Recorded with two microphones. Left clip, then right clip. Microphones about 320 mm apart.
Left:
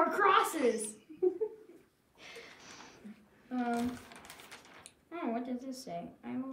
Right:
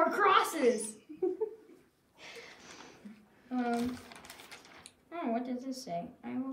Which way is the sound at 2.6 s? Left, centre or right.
Centre.